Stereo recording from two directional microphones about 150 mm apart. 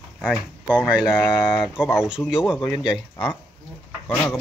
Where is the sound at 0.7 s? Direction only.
5° right (ahead or behind).